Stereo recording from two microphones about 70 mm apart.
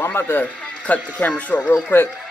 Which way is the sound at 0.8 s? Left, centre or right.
Centre.